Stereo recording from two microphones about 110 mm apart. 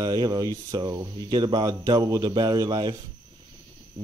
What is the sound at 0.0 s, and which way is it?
Speech, 40° right (ahead or behind).